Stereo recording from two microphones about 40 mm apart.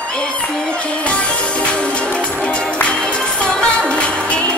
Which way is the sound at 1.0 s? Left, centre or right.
Left.